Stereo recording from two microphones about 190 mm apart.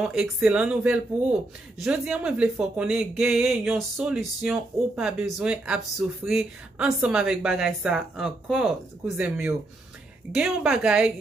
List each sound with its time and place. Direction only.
0.0 s speech: 5° right (ahead or behind)